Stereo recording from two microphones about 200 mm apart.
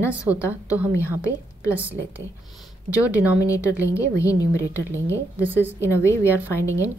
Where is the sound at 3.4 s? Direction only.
15° left (ahead or behind).